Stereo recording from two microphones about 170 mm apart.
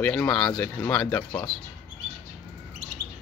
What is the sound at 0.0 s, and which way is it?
Speech, 10° left (ahead or behind).